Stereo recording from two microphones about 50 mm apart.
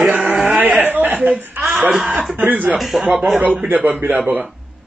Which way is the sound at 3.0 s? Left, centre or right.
Right.